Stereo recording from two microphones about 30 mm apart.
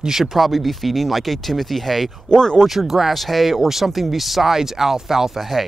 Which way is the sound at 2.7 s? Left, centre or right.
Centre.